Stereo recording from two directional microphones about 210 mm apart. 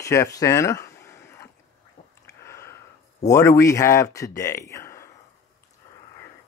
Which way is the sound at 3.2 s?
15° left (ahead or behind).